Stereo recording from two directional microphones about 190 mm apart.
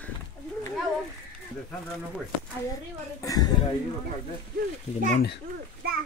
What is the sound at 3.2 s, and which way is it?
Speech, 20° left (ahead or behind).